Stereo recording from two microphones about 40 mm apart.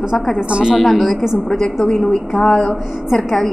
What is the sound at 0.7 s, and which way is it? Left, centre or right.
Speech, centre.